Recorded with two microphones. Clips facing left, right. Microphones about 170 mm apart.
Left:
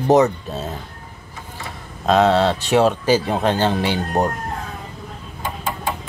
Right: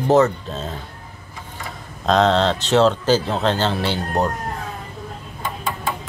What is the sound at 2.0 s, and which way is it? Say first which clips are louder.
Speech: left 1 dB; 5° left (ahead or behind).